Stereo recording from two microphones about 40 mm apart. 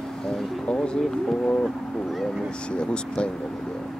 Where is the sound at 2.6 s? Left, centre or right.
Left.